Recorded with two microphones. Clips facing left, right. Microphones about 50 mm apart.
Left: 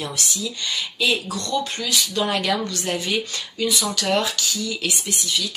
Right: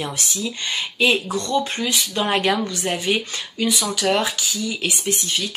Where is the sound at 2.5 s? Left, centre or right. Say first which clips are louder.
Right 1 dB; centre.